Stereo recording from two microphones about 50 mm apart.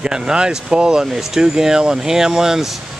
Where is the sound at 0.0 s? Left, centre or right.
Centre.